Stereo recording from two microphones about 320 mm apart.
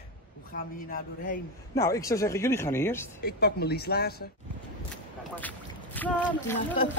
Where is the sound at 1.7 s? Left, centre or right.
Centre.